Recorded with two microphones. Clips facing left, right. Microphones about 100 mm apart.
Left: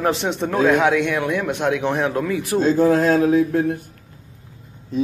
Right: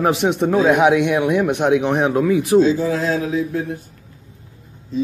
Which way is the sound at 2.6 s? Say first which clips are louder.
Left 2 dB; 50° left (ahead or behind).